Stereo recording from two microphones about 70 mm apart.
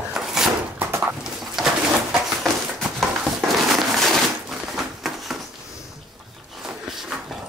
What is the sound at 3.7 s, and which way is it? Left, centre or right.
Crushing, centre.